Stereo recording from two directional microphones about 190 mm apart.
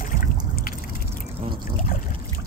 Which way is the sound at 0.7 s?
50° left (ahead or behind).